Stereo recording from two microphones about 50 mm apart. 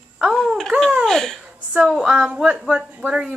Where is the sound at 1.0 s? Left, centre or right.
Centre.